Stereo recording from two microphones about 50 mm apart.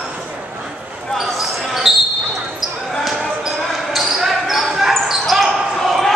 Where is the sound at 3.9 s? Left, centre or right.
Centre.